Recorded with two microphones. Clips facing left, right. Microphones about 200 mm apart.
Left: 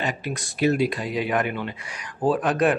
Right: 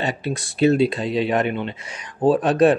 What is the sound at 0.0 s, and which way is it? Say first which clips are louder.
Speech: right 4 dB; 25° right (ahead or behind).